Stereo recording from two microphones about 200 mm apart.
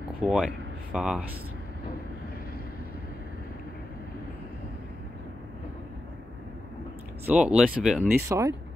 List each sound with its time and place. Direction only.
0.2 s speech: 5° right (ahead or behind)
7.2 s speech: 5° right (ahead or behind)
8.1 s speech: 15° right (ahead or behind)